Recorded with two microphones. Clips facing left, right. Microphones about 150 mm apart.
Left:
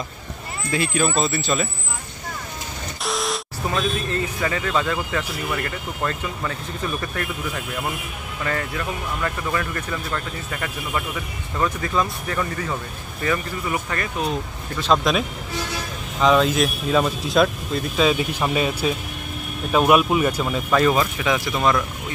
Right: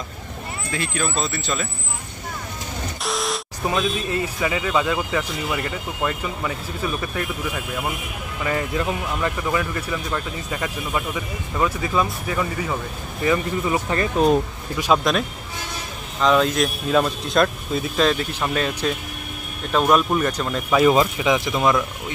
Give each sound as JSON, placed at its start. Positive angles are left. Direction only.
{"t": 0.7, "sound": "speech", "side_deg": 10}
{"t": 3.0, "sound": "a sound", "side_deg": 0}
{"t": 3.7, "sound": "speech", "side_deg": -10}
{"t": 8.5, "sound": "speech", "side_deg": -15}
{"t": 13.2, "sound": "speech", "side_deg": -20}
{"t": 14.8, "sound": "speech", "side_deg": -15}
{"t": 16.2, "sound": "speech", "side_deg": 0}
{"t": 18.1, "sound": "speech", "side_deg": 10}
{"t": 20.9, "sound": "speech", "side_deg": -20}